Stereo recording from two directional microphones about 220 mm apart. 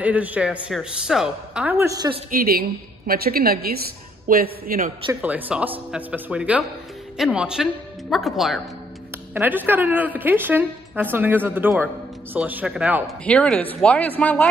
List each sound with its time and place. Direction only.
0.0 s a woman's voice: 5° right (ahead or behind)
2.3 s a woman's voice: 45° right (ahead or behind)
5.2 s a woman's voice: 5° right (ahead or behind)